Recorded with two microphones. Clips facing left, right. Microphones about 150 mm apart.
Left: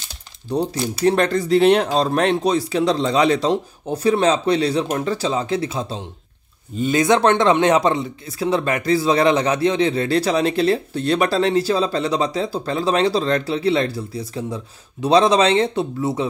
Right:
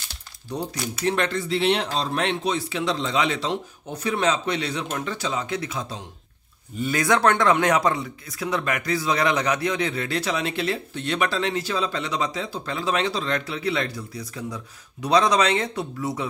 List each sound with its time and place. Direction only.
0.6 s speech: 25° left (ahead or behind)
1.0 s speech: 40° left (ahead or behind)